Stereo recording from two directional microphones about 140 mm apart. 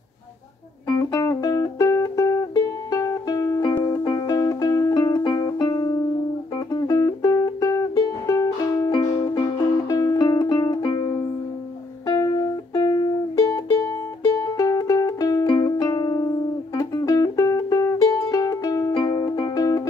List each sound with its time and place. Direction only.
0.8 s music: 25° left (ahead or behind)
8.9 s music: 35° left (ahead or behind)
12.7 s music: 25° left (ahead or behind)
14.6 s music: 25° left (ahead or behind)